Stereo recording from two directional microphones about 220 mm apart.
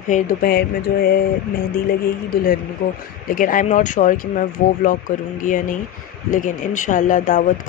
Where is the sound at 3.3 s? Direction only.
40° left (ahead or behind).